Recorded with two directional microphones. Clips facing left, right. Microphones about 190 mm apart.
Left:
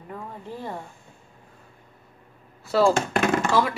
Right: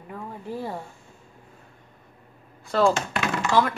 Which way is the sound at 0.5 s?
10° right (ahead or behind).